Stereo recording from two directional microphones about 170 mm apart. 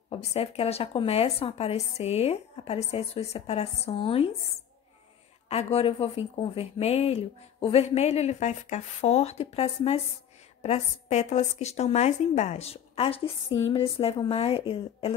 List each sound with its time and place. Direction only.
0.1 s speech: 35° left (ahead or behind)
5.5 s speech: 35° left (ahead or behind)